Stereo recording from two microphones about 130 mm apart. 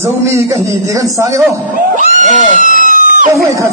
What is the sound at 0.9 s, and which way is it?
Speech, 25° right (ahead or behind).